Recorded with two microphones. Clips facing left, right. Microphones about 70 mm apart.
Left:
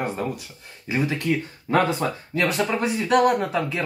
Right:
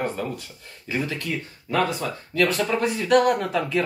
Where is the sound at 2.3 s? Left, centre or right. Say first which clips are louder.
Right 1 dB; centre.